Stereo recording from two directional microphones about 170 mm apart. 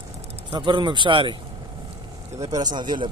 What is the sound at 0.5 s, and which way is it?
Speech, 25° right (ahead or behind).